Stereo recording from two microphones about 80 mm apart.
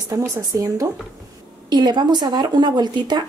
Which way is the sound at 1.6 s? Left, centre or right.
Right.